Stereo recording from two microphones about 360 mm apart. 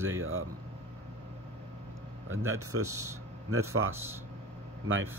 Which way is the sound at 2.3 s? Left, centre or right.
Right.